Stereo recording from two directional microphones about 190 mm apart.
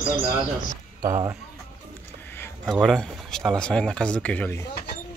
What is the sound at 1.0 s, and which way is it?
Speech, 15° right (ahead or behind).